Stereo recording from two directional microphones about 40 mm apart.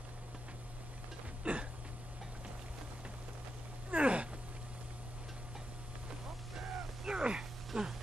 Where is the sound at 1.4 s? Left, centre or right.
Right.